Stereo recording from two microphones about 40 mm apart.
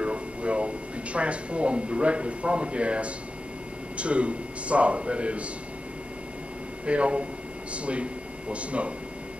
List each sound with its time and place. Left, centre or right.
0.0 s a sound: right
1.1 s a man's voice: right
6.9 s a man's voice: right